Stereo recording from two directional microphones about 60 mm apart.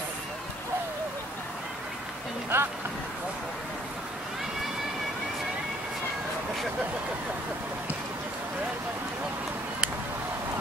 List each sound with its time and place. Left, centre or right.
2.5 s speech: right